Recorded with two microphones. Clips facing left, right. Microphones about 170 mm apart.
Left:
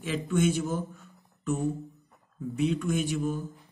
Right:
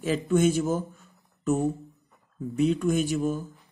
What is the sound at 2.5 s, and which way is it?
Speech, 40° right (ahead or behind).